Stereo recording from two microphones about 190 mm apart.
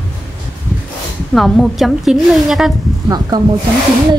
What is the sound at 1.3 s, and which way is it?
A woman's voice, centre (ahead or behind).